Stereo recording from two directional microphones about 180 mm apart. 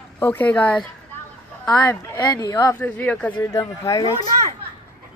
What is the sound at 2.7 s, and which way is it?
Speech, 10° left (ahead or behind).